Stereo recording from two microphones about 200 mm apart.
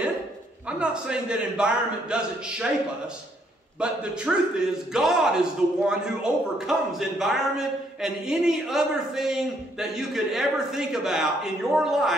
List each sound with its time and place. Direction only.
0.7 s a man's voice: 5° right (ahead or behind)
3.8 s a man's voice: 5° right (ahead or behind)